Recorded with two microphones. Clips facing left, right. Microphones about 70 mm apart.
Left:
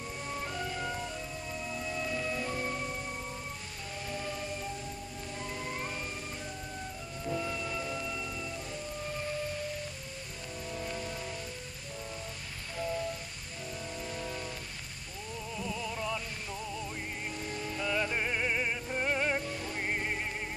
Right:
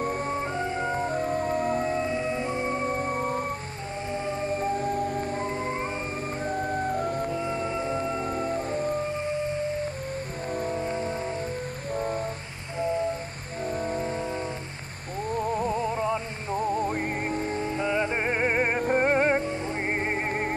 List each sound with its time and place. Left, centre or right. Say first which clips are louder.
0.0 s music: right 10 dB; right
4.1 s music: right 9 dB; right
6.4 s music: right 14 dB; right
7.3 s music: right 7 dB; right
10.5 s music: right 12 dB; right
10.8 s music: right 9 dB; right
11.9 s music: right 14 dB; right
12.7 s music: right 8 dB; right
13.7 s music: right 12 dB; right
15.3 s music: right 12 dB; right